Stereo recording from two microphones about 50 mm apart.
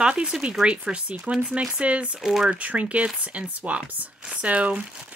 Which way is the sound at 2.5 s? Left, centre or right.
Right.